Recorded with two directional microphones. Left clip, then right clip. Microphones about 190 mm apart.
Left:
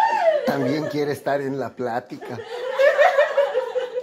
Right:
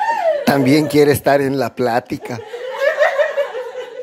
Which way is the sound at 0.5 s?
35° right (ahead or behind).